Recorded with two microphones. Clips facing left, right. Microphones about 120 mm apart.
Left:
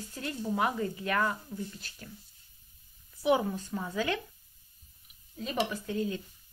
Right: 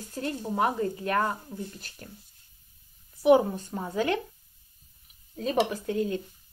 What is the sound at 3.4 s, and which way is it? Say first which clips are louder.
Speech: right 3 dB; 35° right (ahead or behind).